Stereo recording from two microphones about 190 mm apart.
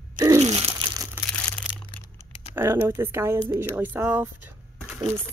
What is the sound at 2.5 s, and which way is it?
Speech, 10° right (ahead or behind).